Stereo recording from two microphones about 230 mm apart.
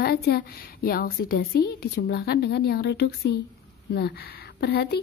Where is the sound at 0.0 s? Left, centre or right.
Left.